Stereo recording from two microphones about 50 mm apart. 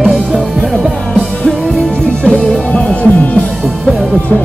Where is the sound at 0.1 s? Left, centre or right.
Centre.